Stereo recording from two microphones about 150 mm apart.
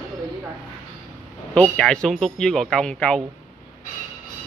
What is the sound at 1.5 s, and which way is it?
Speech, 5° left (ahead or behind).